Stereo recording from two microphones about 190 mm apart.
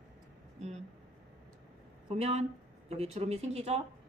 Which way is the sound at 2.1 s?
35° right (ahead or behind).